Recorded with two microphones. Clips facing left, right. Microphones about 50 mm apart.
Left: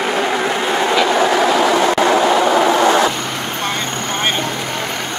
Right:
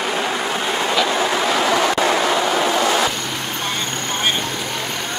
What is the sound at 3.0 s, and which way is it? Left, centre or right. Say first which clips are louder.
Vehicle: left 4 dB; centre.